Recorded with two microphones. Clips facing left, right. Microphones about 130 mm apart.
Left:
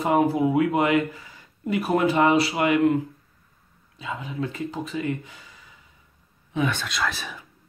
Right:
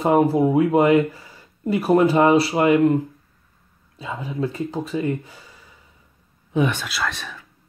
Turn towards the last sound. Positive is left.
turn(degrees=0)  # may be behind; listen again after turning